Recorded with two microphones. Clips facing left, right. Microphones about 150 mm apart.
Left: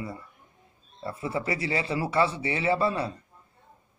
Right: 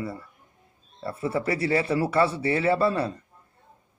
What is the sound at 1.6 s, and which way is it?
Speech, 60° right (ahead or behind).